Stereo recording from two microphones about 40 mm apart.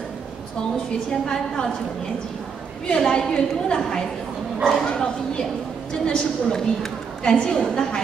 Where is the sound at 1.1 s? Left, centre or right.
Centre.